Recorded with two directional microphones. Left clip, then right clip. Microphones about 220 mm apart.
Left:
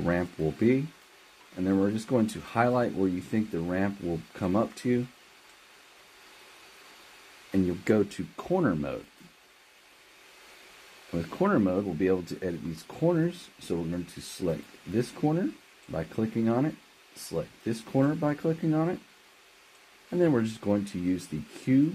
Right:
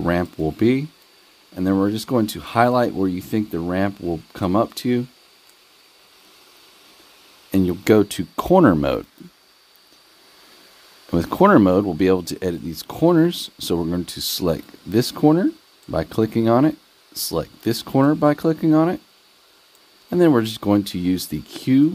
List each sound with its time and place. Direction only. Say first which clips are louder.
0.0 s speech: right 7 dB; 45° right (ahead or behind)
7.5 s speech: right 10 dB; 45° right (ahead or behind)
11.1 s speech: right 13 dB; 45° right (ahead or behind)
20.1 s speech: right 9 dB; 50° right (ahead or behind)